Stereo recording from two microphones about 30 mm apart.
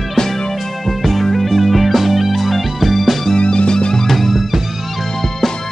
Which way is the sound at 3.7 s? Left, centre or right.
Left.